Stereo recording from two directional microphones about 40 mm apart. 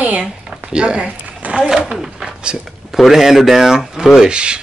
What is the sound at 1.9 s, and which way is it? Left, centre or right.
Speech, centre.